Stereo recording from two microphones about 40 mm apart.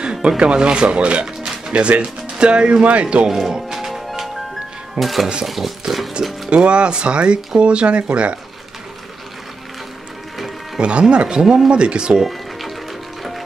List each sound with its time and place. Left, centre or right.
0.0 s a sound: right
0.4 s speech: right
1.2 s music: centre
1.7 s speech: right
3.3 s music: centre
4.9 s a sound: centre
6.5 s speech: right
10.8 s speech: right
11.7 s speech: right
12.2 s music: centre